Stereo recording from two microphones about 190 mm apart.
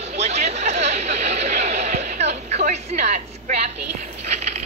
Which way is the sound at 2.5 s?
35° right (ahead or behind).